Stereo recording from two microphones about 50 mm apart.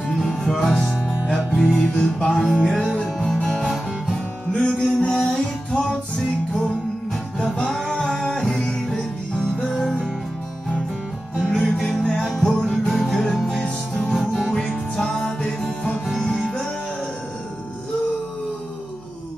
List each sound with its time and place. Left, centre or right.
0.4 s music: centre
1.3 s music: centre
4.1 s music: centre
11.3 s music: centre
14.5 s music: centre